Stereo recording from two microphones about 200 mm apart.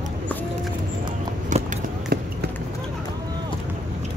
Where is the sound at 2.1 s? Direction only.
50° right (ahead or behind).